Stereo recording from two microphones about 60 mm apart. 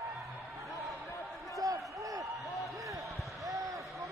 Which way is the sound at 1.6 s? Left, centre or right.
Right.